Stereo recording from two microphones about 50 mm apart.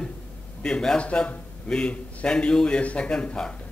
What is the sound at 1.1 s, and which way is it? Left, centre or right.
A man's voice, left.